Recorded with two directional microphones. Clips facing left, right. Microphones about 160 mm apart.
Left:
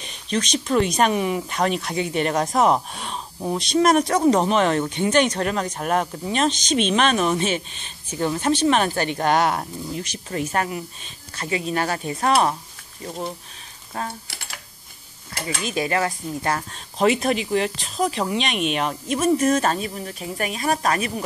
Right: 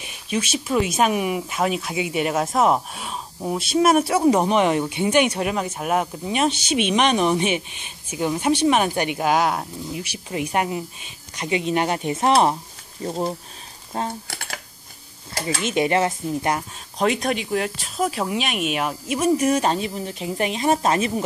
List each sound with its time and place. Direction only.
0.0 s speech: 10° right (ahead or behind); by 14.1 s 30° right (ahead or behind)
15.6 s speech: 25° right (ahead or behind)
16.7 s speech: centre (ahead or behind); by 21.1 s 25° right (ahead or behind)